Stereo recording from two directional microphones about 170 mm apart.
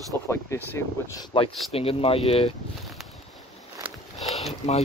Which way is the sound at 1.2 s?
30° left (ahead or behind).